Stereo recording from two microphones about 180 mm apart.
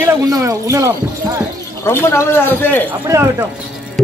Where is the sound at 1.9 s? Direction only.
15° left (ahead or behind).